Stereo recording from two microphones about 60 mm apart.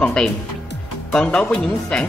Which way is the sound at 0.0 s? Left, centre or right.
Centre.